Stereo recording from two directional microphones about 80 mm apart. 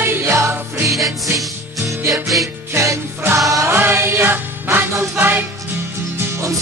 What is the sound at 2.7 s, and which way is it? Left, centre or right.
Music, right.